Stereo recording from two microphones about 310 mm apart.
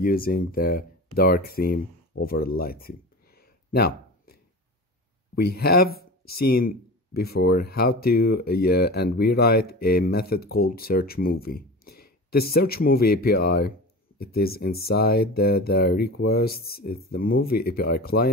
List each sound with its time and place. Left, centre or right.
0.0 s speech: left
3.3 s a sound: left
5.3 s speech: left